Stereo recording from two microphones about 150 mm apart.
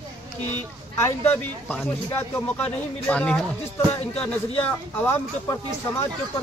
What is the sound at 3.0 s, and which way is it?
Speech, 10° left (ahead or behind).